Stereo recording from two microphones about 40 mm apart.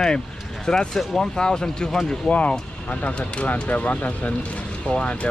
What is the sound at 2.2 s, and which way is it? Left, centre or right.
Speech, left.